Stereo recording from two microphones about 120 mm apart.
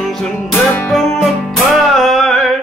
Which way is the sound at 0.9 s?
5° left (ahead or behind).